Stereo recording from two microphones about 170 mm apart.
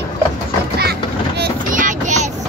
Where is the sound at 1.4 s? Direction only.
50° right (ahead or behind).